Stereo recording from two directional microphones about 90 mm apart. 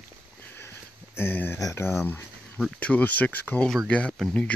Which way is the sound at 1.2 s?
25° left (ahead or behind).